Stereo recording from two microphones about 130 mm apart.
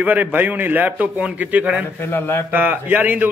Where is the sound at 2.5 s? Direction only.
15° right (ahead or behind).